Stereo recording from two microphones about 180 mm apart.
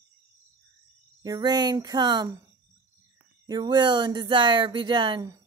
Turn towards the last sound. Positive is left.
turn(degrees=-25)  # may be behind; listen again after turning